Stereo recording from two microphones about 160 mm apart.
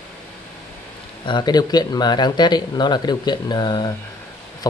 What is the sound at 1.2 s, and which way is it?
Speech, 25° left (ahead or behind).